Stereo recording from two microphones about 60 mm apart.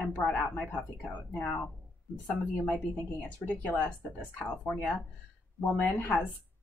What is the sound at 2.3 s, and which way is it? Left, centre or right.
Speech, left.